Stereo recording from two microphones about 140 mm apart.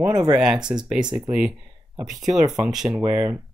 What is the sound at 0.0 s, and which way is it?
Speech, 25° right (ahead or behind).